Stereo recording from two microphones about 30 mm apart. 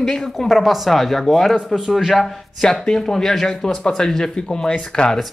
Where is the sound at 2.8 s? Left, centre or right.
Left.